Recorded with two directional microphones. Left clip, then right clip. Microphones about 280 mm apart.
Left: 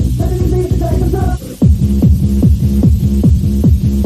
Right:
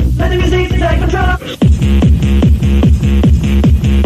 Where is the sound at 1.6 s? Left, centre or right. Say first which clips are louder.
Right 1 dB; right.